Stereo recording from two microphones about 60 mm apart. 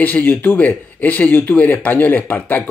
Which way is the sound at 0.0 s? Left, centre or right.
Left.